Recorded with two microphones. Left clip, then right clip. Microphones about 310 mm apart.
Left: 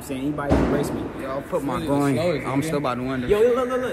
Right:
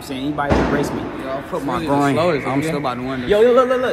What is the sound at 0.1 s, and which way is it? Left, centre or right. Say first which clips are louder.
Speech: right 4 dB; centre.